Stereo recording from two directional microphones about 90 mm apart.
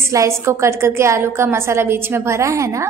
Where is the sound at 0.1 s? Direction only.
35° right (ahead or behind).